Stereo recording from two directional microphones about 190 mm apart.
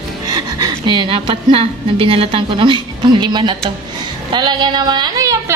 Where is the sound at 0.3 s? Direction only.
20° right (ahead or behind).